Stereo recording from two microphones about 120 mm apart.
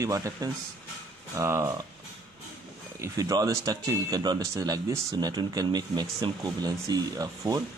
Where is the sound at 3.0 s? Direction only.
30° right (ahead or behind).